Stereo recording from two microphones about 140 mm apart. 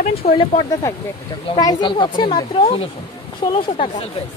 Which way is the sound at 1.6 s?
30° left (ahead or behind).